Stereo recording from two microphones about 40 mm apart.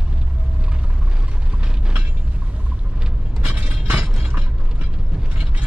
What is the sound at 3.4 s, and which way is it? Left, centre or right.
Vehicle, right.